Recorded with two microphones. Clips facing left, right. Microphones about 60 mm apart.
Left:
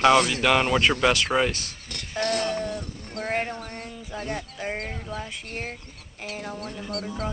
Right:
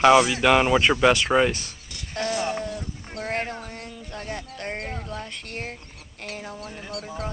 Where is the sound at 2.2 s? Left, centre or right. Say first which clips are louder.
Even; left.